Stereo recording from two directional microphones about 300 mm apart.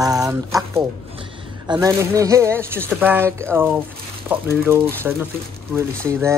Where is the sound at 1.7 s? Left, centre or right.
Centre.